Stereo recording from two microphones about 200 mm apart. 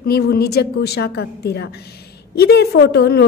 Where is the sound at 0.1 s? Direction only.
50° left (ahead or behind).